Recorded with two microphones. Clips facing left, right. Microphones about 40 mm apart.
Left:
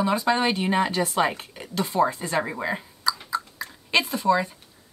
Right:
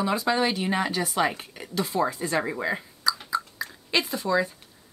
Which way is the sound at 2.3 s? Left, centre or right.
Centre.